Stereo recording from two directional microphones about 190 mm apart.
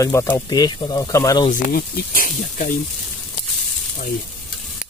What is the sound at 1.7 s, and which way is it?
Speech, 50° left (ahead or behind).